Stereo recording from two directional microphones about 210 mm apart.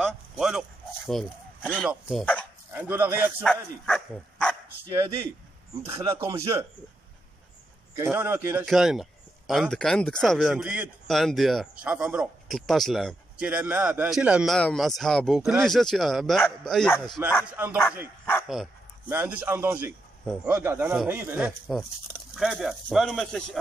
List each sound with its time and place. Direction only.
0.0 s speech: 5° right (ahead or behind)
3.4 s speech: 5° left (ahead or behind)
5.8 s speech: 25° right (ahead or behind)
6.0 s speech: 15° right (ahead or behind)
8.0 s a man's voice: 10° right (ahead or behind)